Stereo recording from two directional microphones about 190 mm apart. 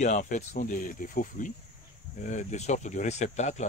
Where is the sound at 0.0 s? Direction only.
40° left (ahead or behind).